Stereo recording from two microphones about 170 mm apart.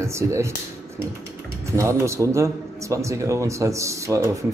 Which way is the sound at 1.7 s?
15° right (ahead or behind).